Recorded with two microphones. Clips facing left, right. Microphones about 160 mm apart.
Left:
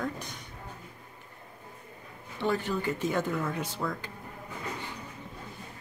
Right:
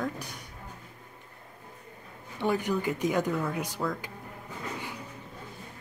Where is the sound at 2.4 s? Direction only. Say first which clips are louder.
Right 2 dB; 15° right (ahead or behind).